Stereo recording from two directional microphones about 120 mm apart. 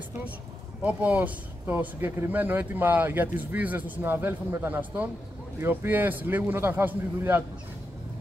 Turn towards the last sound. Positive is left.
turn(degrees=-15)  # may be behind; listen again after turning